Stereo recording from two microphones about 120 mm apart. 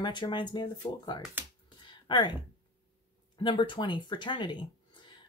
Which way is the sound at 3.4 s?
40° left (ahead or behind).